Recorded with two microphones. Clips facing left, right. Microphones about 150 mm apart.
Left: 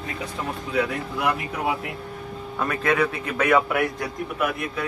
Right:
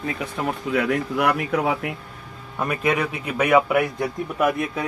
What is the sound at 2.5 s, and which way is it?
A man's voice, 15° right (ahead or behind).